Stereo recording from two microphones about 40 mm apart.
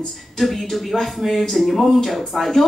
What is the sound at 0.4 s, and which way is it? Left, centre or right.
Speech, centre.